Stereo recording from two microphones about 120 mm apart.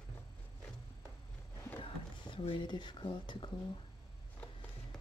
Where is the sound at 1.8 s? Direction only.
50° left (ahead or behind).